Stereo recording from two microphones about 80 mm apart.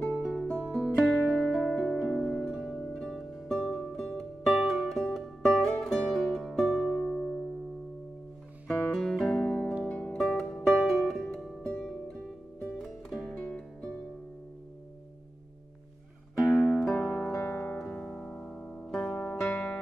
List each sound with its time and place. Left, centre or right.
0.2 s music: centre
8.6 s guitar: centre
9.8 s music: centre
10.1 s music: centre
12.7 s music: centre
13.4 s music: centre
16.5 s music: centre
17.5 s music: left
17.7 s music: centre